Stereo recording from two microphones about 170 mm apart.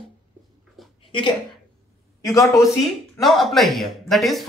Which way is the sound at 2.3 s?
20° left (ahead or behind).